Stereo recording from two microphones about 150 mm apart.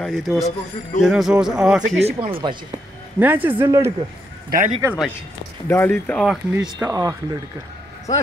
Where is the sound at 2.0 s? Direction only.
35° right (ahead or behind).